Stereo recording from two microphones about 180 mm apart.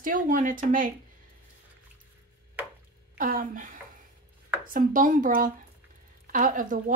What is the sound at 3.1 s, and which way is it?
A woman's voice, 50° right (ahead or behind).